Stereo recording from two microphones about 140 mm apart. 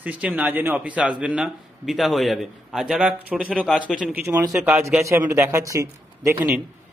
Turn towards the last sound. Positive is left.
turn(degrees=-20)  # may be behind; listen again after turning